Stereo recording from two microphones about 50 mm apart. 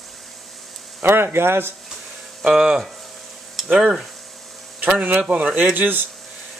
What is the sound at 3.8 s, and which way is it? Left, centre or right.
Speech, centre.